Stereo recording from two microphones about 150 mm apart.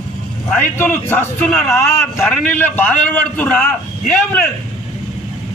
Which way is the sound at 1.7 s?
15° left (ahead or behind).